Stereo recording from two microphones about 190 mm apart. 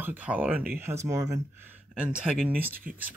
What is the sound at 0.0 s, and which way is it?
Speech, 10° right (ahead or behind).